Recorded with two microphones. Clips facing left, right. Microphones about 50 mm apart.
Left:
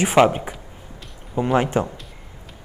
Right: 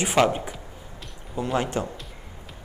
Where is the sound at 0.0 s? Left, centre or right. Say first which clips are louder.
Left 5 dB; left.